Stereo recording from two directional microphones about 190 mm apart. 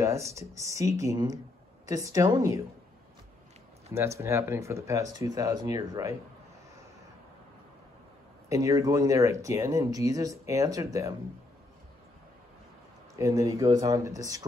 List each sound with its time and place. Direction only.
0.0 s speech: 15° right (ahead or behind)
3.9 s speech: 15° right (ahead or behind)
8.5 s speech: 15° right (ahead or behind)
13.1 s speech: 15° right (ahead or behind)